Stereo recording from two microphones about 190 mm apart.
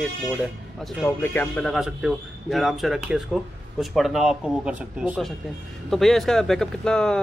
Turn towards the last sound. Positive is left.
turn(degrees=5)  # may be behind; listen again after turning